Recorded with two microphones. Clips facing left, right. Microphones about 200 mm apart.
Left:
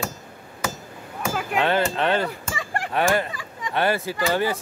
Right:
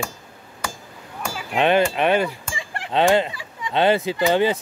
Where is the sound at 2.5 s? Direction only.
45° left (ahead or behind).